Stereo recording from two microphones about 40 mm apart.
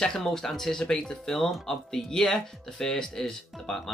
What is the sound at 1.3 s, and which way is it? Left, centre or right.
Speech, centre.